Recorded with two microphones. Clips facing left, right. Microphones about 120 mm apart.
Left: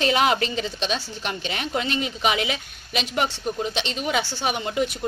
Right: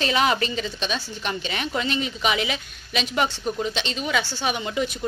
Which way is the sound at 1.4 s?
Centre (ahead or behind).